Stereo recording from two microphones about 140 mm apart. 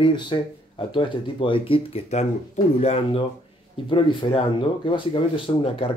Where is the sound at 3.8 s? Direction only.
40° left (ahead or behind).